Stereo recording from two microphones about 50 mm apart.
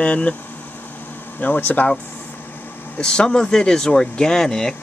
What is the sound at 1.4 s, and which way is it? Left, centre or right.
Speech, left.